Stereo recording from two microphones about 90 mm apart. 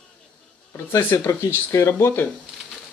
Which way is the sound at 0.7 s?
25° left (ahead or behind).